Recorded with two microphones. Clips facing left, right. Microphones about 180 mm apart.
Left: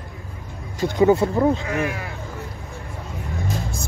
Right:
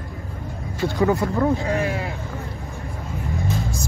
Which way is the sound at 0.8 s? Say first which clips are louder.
Left 4 dB; 20° left (ahead or behind).